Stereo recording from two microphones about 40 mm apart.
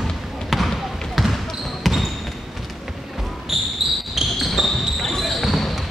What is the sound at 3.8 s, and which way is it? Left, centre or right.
Basketball bounce, centre.